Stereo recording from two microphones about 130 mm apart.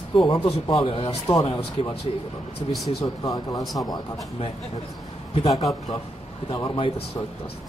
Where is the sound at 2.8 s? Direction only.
30° left (ahead or behind).